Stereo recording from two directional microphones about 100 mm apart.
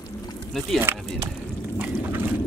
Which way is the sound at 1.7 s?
20° right (ahead or behind).